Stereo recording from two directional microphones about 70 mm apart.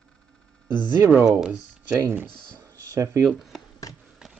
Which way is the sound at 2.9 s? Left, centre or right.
Right.